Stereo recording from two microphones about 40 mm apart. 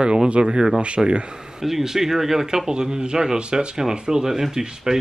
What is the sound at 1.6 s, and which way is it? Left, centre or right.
Speech, centre.